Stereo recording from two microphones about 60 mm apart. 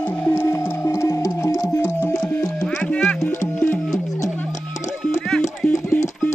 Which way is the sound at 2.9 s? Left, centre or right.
Centre.